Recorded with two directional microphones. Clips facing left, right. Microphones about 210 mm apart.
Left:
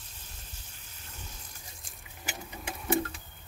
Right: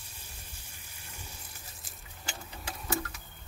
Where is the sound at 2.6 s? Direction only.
30° left (ahead or behind).